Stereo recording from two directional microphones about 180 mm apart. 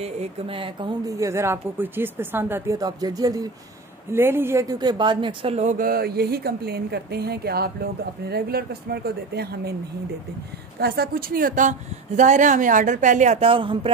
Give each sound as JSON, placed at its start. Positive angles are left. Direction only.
{"t": 0.0, "sound": "speech", "side_deg": -35}
{"t": 10.8, "sound": "speech", "side_deg": -60}